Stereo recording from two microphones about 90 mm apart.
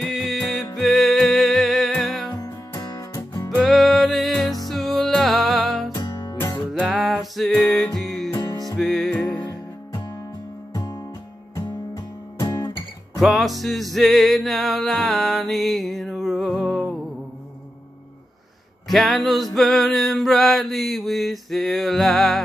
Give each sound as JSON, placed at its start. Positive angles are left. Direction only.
{"t": 0.0, "sound": "music", "side_deg": 0}
{"t": 2.4, "sound": "music", "side_deg": 45}
{"t": 3.6, "sound": "music", "side_deg": 0}
{"t": 5.9, "sound": "music", "side_deg": 45}
{"t": 6.7, "sound": "music", "side_deg": -10}
{"t": 8.3, "sound": "music", "side_deg": 45}
{"t": 8.7, "sound": "music", "side_deg": 0}
{"t": 11.5, "sound": "music", "side_deg": 40}
{"t": 13.2, "sound": "music", "side_deg": 0}
{"t": 18.9, "sound": "male singing", "side_deg": 0}